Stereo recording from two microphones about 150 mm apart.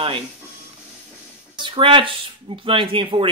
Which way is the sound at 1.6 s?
35° right (ahead or behind).